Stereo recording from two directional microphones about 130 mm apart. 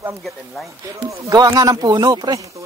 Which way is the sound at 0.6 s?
25° right (ahead or behind).